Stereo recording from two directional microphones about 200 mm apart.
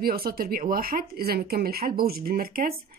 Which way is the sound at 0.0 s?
50° right (ahead or behind).